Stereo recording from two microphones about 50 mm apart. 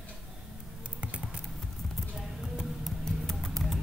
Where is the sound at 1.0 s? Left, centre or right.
Right.